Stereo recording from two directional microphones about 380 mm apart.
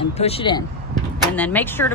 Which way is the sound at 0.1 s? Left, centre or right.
Centre.